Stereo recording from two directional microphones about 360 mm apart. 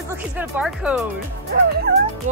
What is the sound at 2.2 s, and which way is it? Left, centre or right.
Speech, right.